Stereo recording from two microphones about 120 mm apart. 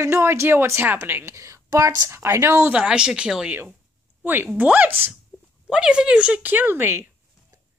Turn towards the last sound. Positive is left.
turn(degrees=-20)  # may be behind; listen again after turning